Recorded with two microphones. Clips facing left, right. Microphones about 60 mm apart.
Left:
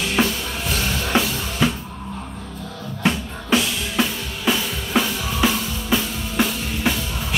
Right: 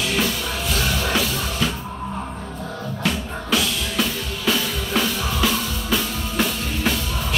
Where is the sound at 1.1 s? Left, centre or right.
Left.